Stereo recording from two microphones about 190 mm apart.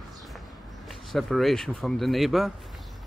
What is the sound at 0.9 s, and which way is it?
Speech, centre (ahead or behind).